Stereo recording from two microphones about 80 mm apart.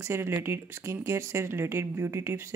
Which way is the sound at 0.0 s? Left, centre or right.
Right.